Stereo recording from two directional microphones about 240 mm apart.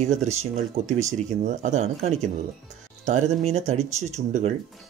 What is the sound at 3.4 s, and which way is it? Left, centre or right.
Speech, right.